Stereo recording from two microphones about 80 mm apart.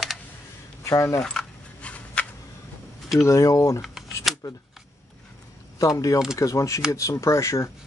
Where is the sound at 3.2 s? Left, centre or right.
Left.